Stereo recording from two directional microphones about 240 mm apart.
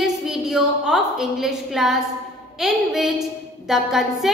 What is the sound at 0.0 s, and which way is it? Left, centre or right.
A woman's voice, centre.